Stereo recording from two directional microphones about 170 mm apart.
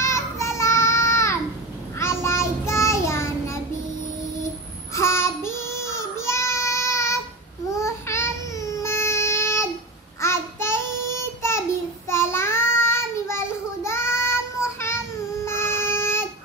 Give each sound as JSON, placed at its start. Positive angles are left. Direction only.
{"t": 0.0, "sound": "child singing", "side_deg": 15}
{"t": 4.9, "sound": "child singing", "side_deg": 15}
{"t": 7.7, "sound": "a sound", "side_deg": 15}
{"t": 10.2, "sound": "child singing", "side_deg": 15}
{"t": 15.4, "sound": "music", "side_deg": 15}